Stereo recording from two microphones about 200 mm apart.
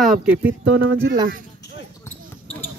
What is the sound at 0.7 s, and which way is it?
Speech, 50° right (ahead or behind).